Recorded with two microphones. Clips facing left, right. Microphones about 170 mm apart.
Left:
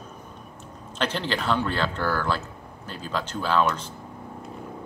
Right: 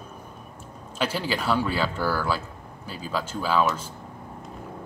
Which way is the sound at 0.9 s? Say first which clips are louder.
Even; 10° right (ahead or behind).